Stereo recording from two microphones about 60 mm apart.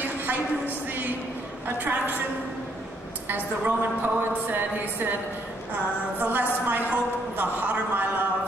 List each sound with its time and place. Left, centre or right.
0.0 s a sound: right
1.8 s a woman's voice: right
3.3 s a woman's voice: right